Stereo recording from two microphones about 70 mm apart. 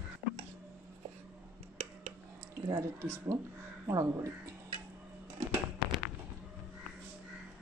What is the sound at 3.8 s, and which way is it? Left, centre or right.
Speech, right.